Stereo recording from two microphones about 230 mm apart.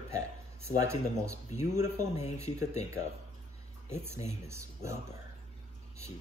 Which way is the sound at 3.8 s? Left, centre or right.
Centre.